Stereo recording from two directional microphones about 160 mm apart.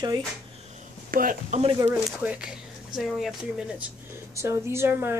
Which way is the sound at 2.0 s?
5° right (ahead or behind).